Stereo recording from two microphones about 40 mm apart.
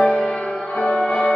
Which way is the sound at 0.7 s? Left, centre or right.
Left.